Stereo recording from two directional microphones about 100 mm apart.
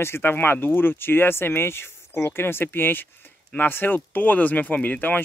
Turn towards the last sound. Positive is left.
turn(degrees=20)  # may be behind; listen again after turning